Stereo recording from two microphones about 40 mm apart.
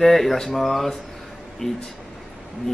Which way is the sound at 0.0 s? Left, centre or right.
Centre.